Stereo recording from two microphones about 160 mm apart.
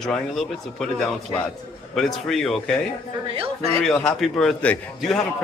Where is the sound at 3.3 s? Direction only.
35° right (ahead or behind).